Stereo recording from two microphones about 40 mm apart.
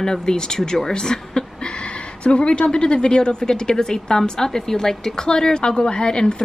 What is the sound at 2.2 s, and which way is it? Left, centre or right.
A woman's voice, left.